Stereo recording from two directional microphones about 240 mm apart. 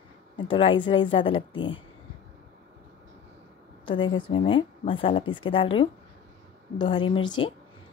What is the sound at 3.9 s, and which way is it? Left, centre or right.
Speech, centre.